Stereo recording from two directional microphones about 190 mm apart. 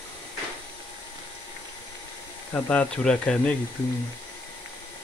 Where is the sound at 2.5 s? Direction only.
10° left (ahead or behind).